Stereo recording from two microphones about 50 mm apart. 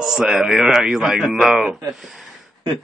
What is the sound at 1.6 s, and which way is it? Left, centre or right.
Speech, centre.